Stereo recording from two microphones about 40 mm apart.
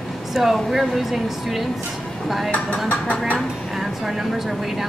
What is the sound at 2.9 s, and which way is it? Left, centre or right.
Speech, left.